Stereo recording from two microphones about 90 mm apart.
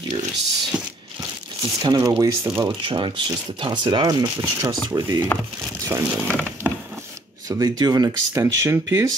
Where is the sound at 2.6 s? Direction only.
65° right (ahead or behind); by 5.2 s 35° right (ahead or behind).